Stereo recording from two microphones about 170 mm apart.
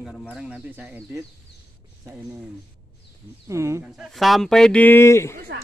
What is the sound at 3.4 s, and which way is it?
Speech, 15° right (ahead or behind).